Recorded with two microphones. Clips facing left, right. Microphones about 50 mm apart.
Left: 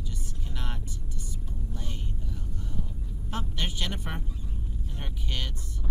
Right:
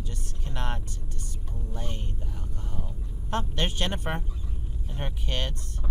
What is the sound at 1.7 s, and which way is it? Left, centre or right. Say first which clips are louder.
Speech: right 6 dB; right.